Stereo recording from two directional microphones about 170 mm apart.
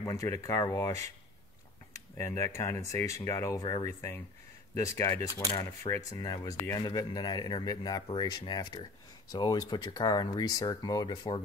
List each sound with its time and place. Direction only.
0.0 s speech: 20° left (ahead or behind)
2.1 s speech: 15° left (ahead or behind)
4.7 s speech: 20° left (ahead or behind)